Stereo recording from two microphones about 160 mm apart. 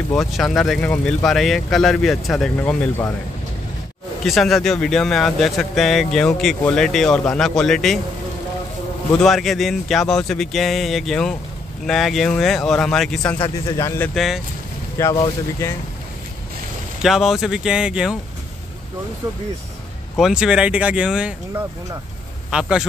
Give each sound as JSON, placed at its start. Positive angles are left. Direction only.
{"t": 0.1, "sound": "speech", "side_deg": 0}
{"t": 4.2, "sound": "speech", "side_deg": 0}
{"t": 9.1, "sound": "speech", "side_deg": 0}
{"t": 13.7, "sound": "speech", "side_deg": 20}
{"t": 14.1, "sound": "speech", "side_deg": 0}
{"t": 15.0, "sound": "speech", "side_deg": 15}
{"t": 17.0, "sound": "speech", "side_deg": 0}
{"t": 20.2, "sound": "speech", "side_deg": -5}